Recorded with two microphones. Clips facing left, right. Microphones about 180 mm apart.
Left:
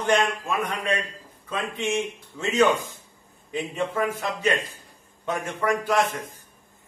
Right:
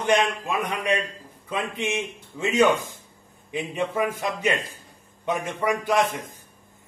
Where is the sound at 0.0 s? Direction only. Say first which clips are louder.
Right 1 dB; 15° right (ahead or behind).